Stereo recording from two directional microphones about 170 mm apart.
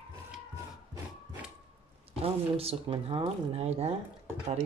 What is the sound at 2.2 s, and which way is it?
Speech, 35° right (ahead or behind).